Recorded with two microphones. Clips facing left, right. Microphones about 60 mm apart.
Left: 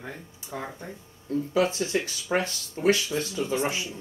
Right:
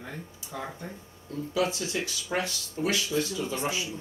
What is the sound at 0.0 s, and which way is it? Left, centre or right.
Speech, centre.